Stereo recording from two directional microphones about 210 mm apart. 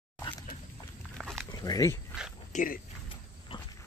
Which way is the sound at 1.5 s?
15° left (ahead or behind).